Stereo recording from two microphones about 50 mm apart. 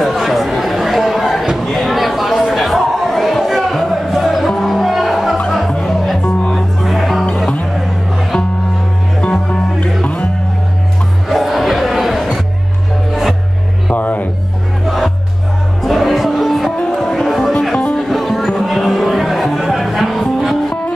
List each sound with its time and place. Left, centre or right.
0.0 s chatter: centre
1.7 s a sound: centre
5.5 s music: centre
9.2 s music: left
11.2 s crowd: centre
13.9 s music: left
14.9 s music: centre
17.7 s music: centre
18.1 s music: centre